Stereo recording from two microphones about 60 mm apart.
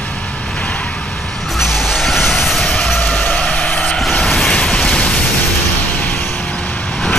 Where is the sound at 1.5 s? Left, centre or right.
Centre.